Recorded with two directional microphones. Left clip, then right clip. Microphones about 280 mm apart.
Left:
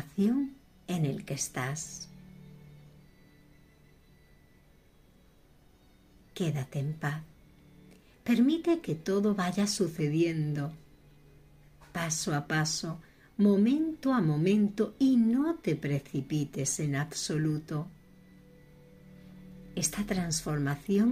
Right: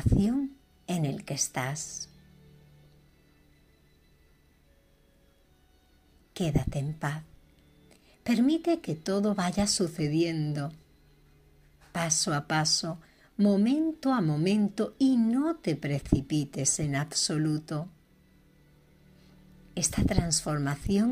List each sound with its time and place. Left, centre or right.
0.8 s a woman's voice: right
6.3 s a woman's voice: right
11.9 s a woman's voice: right
19.7 s a woman's voice: right